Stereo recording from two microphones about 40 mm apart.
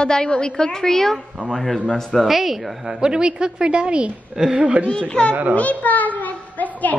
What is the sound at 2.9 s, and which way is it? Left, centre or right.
A woman's voice, centre.